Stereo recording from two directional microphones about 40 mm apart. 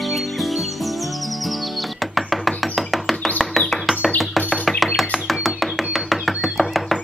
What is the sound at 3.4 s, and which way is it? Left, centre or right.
Bird, centre.